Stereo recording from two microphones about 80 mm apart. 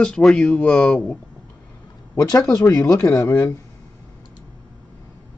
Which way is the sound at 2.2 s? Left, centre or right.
Left.